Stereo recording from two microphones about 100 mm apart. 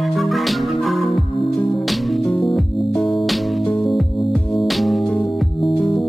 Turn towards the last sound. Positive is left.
turn(degrees=0)  # may be behind; listen again after turning